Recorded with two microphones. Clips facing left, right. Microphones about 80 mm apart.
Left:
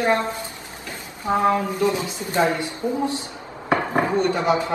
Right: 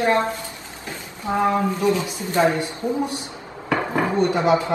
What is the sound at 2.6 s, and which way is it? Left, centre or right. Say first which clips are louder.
Speech: even; centre.